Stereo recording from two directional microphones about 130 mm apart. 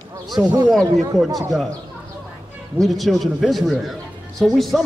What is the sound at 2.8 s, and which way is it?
A man's voice, centre (ahead or behind).